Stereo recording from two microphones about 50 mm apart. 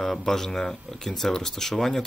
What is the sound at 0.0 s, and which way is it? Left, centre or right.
Speech, centre.